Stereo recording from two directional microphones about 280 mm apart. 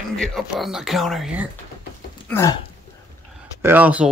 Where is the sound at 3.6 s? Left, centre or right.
Centre.